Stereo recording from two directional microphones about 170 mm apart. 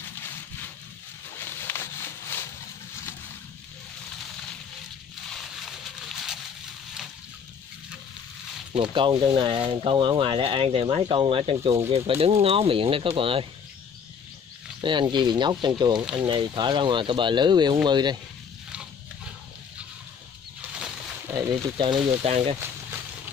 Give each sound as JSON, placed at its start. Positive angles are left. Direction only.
{"t": 1.4, "sound": "a sound", "side_deg": 15}
{"t": 5.9, "sound": "pig", "side_deg": 0}
{"t": 8.7, "sound": "speech", "side_deg": -30}
{"t": 14.8, "sound": "speech", "side_deg": -30}
{"t": 21.3, "sound": "speech", "side_deg": -20}
{"t": 22.2, "sound": "speech", "side_deg": -40}